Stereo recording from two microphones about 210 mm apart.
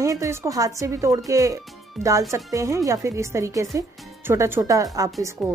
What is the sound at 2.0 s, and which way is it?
Speech, centre (ahead or behind).